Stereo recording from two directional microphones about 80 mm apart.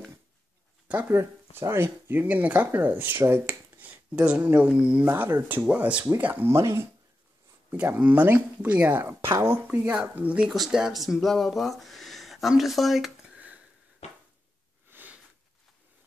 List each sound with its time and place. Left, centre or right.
0.8 s speech: centre
1.1 s speech: right
6.4 s speech: right
7.7 s speech: centre
9.3 s speech: right
9.7 s speech: centre
10.5 s speech: centre
14.9 s sniff: right